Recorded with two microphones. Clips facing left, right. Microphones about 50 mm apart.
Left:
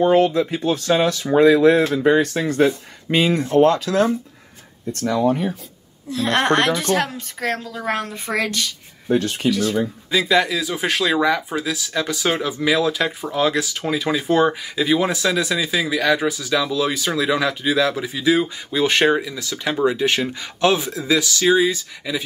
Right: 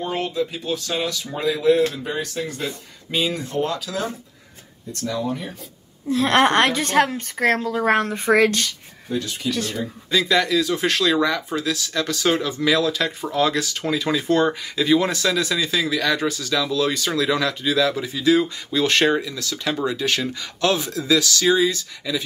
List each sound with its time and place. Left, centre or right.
0.0 s speech: left
0.3 s speech: left
6.1 s a woman's voice: centre
7.3 s speech: right
9.1 s speech: left
10.1 s speech: centre